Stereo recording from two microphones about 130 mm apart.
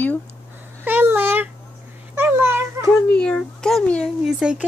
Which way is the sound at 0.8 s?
15° right (ahead or behind).